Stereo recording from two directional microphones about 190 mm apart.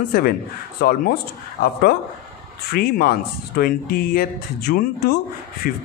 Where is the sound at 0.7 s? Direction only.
55° left (ahead or behind).